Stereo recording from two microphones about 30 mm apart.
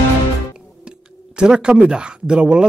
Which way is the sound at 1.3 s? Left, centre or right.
Right.